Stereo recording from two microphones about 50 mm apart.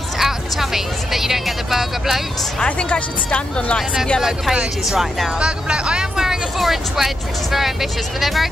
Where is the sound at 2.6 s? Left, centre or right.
Centre.